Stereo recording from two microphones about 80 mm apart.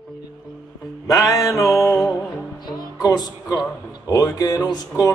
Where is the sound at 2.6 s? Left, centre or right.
Left.